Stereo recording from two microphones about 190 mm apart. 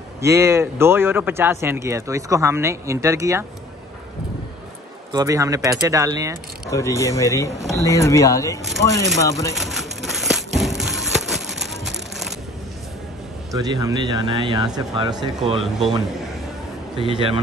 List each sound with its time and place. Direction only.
0.2 s speech: 15° right (ahead or behind)
5.1 s speech: 15° right (ahead or behind)
6.7 s speech: 15° left (ahead or behind)
9.6 s a sound: centre (ahead or behind)
13.5 s speech: 20° right (ahead or behind)
16.9 s speech: 30° right (ahead or behind)